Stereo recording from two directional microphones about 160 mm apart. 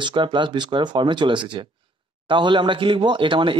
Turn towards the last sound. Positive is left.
turn(degrees=-30)  # may be behind; listen again after turning